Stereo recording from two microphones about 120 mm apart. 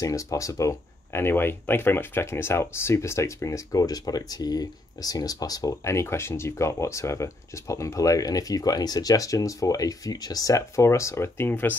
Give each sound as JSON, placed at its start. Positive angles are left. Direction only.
{"t": 0.0, "sound": "speech", "side_deg": 25}